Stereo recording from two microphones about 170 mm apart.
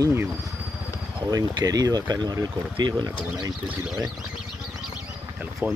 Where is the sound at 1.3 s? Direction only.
20° right (ahead or behind).